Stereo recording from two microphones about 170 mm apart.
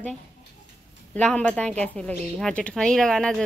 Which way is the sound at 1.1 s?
5° left (ahead or behind).